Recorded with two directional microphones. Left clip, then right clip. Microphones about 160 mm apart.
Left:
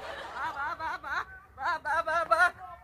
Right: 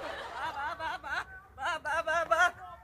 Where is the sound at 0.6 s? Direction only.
60° right (ahead or behind).